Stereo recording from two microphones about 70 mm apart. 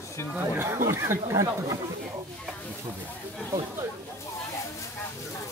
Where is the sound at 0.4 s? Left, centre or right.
Right.